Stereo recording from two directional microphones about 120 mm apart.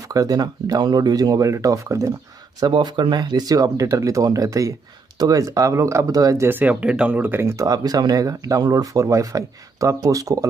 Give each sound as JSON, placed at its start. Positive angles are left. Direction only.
{"t": 0.1, "sound": "speech", "side_deg": -30}
{"t": 2.6, "sound": "speech", "side_deg": -40}